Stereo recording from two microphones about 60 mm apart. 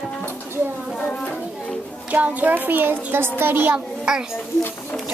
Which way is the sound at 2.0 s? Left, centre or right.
Right.